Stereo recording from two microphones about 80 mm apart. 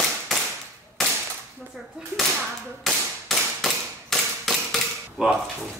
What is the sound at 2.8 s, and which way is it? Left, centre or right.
Whip, centre.